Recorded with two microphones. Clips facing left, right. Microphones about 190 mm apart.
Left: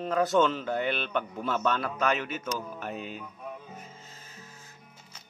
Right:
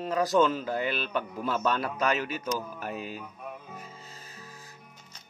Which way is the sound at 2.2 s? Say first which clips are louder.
Right 2 dB; 40° right (ahead or behind).